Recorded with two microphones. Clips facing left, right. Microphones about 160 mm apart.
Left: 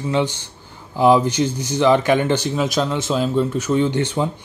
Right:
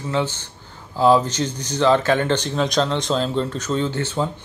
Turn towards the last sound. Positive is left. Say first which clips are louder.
# left 4 dB
turn(degrees=15)  # may be behind; listen again after turning